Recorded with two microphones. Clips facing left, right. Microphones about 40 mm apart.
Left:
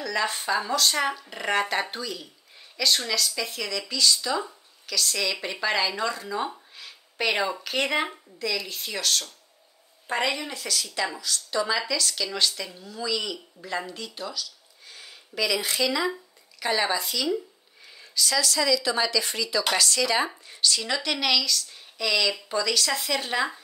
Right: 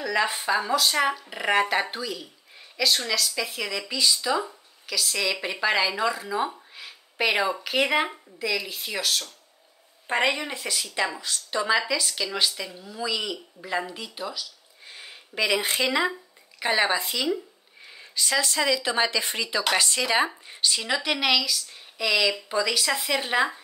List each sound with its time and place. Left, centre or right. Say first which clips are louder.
0.0 s speech: right 2 dB; centre
10.0 s a woman's voice: right 3 dB; right
14.9 s a woman's voice: right 2 dB; right